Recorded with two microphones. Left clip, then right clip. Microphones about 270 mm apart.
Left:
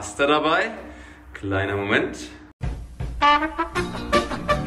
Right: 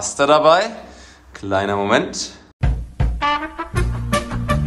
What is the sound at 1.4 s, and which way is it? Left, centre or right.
Speech, centre.